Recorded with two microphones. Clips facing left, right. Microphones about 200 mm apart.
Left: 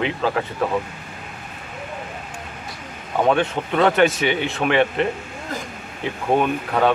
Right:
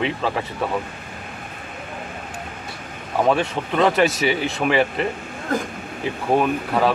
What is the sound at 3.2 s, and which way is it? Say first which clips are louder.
Speech: left 1 dB; centre (ahead or behind).